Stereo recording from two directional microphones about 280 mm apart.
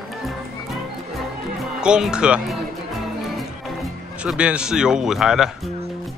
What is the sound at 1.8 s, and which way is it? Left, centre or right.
Speech, centre.